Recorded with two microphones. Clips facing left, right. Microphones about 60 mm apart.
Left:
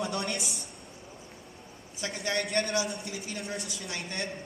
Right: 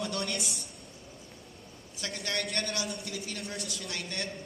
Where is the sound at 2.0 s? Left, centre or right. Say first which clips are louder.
Left 3 dB; left.